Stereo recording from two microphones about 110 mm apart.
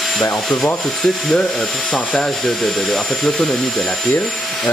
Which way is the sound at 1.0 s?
5° left (ahead or behind).